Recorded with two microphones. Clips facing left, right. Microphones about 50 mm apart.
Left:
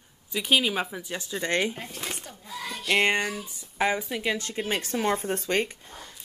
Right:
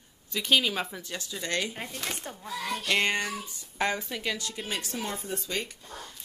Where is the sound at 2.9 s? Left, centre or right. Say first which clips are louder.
Left 4 dB; left.